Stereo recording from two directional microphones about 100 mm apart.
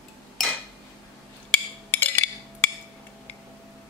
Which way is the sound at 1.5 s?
20° left (ahead or behind).